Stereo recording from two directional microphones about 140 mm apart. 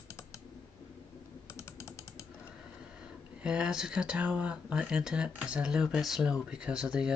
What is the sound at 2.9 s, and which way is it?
Speech, 5° right (ahead or behind).